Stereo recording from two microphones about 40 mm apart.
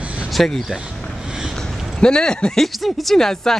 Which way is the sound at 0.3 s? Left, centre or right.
Centre.